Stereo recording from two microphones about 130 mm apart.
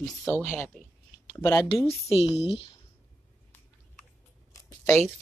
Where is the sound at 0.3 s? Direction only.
15° left (ahead or behind).